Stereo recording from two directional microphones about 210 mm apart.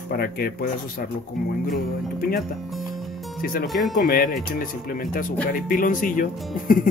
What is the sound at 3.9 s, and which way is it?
Speech, 45° left (ahead or behind).